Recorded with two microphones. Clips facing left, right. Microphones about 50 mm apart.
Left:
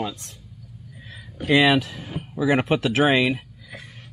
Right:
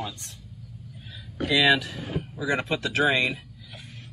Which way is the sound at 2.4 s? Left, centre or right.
Left.